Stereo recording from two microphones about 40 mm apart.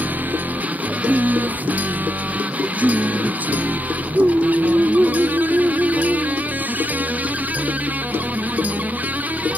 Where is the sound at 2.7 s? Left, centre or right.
Right.